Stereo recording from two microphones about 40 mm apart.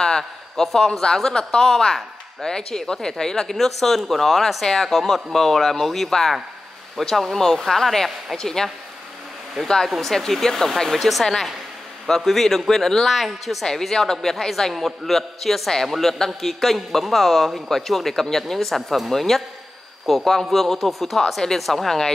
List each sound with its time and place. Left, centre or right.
0.6 s speech: centre
9.8 s speech: centre
13.7 s speech: centre